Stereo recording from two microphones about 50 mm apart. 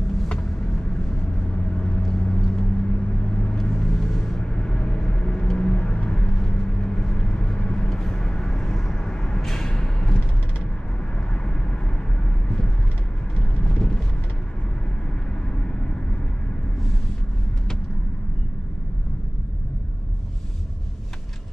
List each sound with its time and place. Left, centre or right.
0.3 s vehicle: centre
9.5 s a sound: centre
12.4 s vehicle: centre
15.5 s vehicle: centre